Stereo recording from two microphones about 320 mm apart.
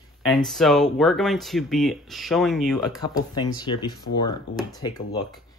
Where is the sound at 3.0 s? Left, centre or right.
Centre.